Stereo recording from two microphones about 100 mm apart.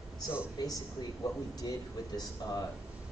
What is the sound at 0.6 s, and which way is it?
Speech, 45° left (ahead or behind).